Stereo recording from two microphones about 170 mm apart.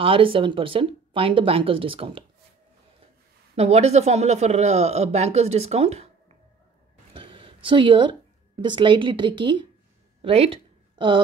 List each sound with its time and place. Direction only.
0.0 s speech: 30° right (ahead or behind)
3.5 s speech: 40° right (ahead or behind)
7.2 s a woman's voice: 30° right (ahead or behind)
10.2 s a sound: 35° right (ahead or behind)